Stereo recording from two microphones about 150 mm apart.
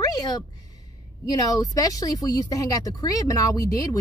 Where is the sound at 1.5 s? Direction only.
25° left (ahead or behind).